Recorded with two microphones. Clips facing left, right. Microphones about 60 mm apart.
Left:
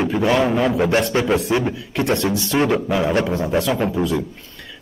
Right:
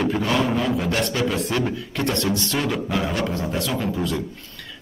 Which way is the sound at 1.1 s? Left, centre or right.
Left.